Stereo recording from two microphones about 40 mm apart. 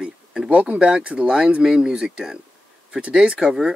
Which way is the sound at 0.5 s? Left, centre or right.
Right.